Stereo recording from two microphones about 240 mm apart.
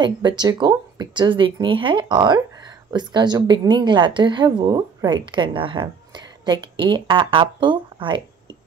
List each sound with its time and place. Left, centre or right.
0.0 s a woman's voice: centre